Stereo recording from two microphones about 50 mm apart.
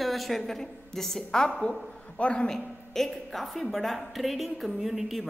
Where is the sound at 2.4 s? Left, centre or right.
Centre.